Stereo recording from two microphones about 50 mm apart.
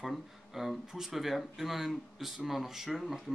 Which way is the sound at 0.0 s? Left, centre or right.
Centre.